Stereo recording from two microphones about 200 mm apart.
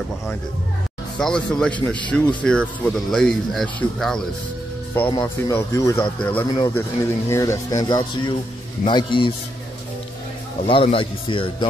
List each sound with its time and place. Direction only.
1.1 s speech: 5° left (ahead or behind)
5.1 s speech: 15° left (ahead or behind)
6.4 s a man's voice: 20° left (ahead or behind)
10.6 s a man's voice: 30° left (ahead or behind)